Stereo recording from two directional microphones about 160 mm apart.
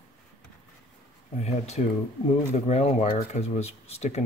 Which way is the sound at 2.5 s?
40° left (ahead or behind).